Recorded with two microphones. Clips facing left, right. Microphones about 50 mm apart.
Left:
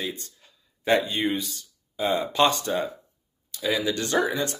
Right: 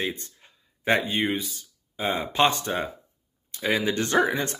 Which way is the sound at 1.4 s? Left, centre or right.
Centre.